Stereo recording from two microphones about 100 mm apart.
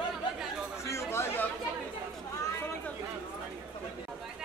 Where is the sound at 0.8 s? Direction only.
25° left (ahead or behind).